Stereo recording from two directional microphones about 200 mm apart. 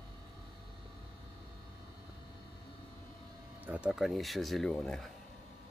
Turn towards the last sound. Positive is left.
turn(degrees=0)  # may be behind; listen again after turning